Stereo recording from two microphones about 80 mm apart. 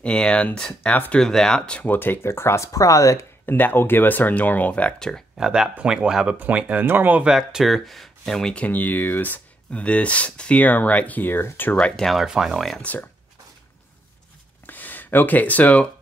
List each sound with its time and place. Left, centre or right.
0.0 s speech: centre
1.2 s speech: centre
1.9 s speech: left
3.4 s speech: left
4.9 s speech: centre
5.4 s speech: centre
7.2 s speech: centre
8.6 s speech: left
11.7 s speech: centre
12.1 s speech: centre
14.7 s speech: left